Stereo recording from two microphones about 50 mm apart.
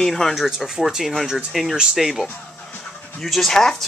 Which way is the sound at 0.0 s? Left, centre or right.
Centre.